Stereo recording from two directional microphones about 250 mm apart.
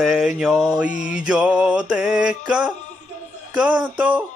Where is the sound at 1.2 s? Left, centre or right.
Centre.